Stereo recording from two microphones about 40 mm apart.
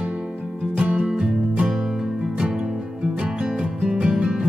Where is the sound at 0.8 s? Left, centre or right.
Right.